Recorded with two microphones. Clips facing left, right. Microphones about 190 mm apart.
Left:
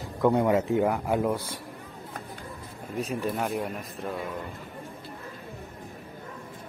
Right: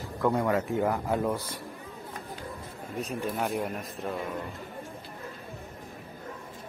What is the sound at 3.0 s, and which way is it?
Speech, centre (ahead or behind).